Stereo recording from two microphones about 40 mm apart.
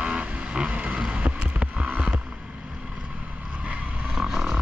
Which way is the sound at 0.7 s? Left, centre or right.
Right.